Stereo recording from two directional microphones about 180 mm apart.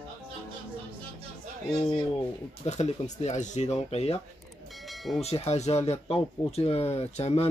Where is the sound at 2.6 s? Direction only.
40° left (ahead or behind).